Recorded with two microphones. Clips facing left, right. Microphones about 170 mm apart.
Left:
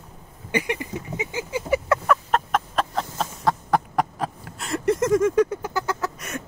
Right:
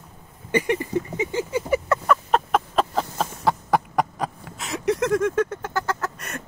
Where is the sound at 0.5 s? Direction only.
10° left (ahead or behind).